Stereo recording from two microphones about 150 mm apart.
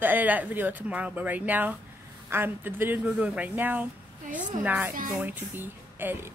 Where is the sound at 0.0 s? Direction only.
10° right (ahead or behind).